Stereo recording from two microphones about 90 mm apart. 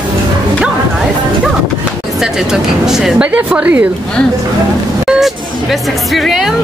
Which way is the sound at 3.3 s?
15° right (ahead or behind).